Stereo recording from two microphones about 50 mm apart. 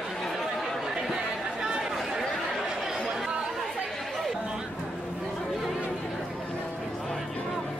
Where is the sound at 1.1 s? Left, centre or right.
Centre.